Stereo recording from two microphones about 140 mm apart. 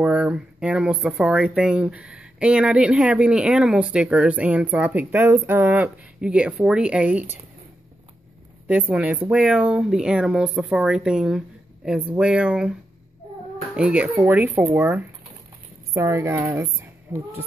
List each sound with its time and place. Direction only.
0.0 s speech: 5° right (ahead or behind)
8.6 s speech: 10° right (ahead or behind)
13.7 s a woman's voice: 10° right (ahead or behind)